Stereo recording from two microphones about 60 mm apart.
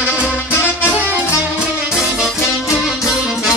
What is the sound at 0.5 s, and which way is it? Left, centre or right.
Music, left.